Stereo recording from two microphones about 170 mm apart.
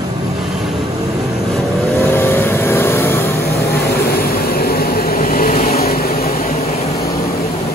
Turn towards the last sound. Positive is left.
turn(degrees=60)  # may be behind; listen again after turning